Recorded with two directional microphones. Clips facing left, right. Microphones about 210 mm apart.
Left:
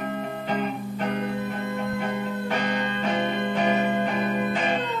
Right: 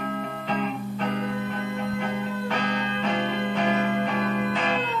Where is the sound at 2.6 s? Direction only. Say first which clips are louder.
Left 1 dB; 50° left (ahead or behind).